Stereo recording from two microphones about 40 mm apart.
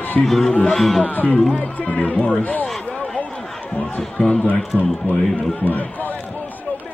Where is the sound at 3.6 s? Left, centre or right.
Left.